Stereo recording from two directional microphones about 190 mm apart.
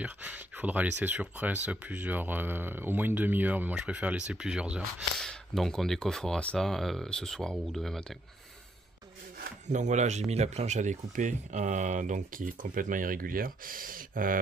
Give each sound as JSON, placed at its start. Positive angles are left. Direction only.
{"t": 0.0, "sound": "speech", "side_deg": -10}
{"t": 9.4, "sound": "speech", "side_deg": -40}